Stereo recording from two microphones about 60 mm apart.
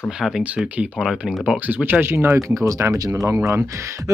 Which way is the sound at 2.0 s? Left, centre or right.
Right.